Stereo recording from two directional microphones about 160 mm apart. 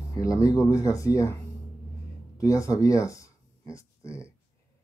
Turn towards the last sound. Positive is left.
turn(degrees=20)  # may be behind; listen again after turning